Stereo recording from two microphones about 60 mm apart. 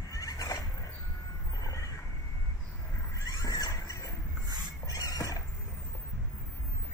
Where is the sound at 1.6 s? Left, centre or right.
Left.